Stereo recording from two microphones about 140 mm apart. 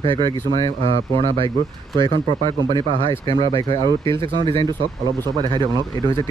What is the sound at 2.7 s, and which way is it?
Speech, 35° right (ahead or behind).